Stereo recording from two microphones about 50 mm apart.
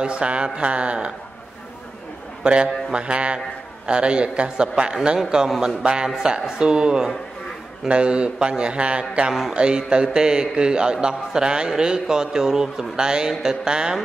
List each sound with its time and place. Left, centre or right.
0.0 s a man's voice: centre
2.4 s a man's voice: right